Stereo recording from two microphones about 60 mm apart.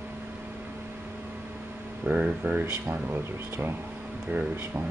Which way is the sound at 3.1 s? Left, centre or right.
Right.